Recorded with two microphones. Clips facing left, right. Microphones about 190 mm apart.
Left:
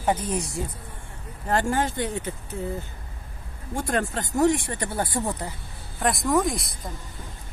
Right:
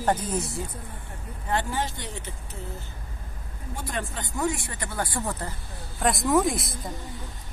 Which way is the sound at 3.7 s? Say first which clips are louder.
Left 7 dB; 45° left (ahead or behind).